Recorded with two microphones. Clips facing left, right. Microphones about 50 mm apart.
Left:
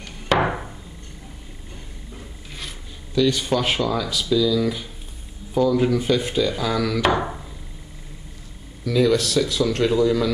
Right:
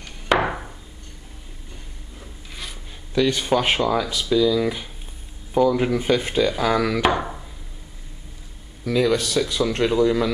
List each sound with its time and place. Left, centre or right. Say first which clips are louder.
0.0 s hammer: even; centre
3.2 s speech: even; right
8.8 s speech: left 1 dB; centre